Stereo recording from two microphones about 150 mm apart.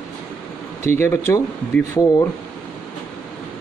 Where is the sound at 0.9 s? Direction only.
15° left (ahead or behind).